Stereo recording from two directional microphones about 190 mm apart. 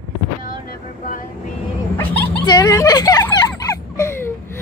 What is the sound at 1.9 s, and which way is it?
Dog, 10° left (ahead or behind).